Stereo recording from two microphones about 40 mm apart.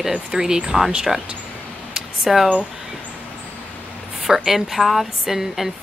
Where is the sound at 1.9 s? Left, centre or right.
Centre.